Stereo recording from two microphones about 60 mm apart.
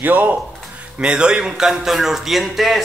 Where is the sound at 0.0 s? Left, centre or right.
Right.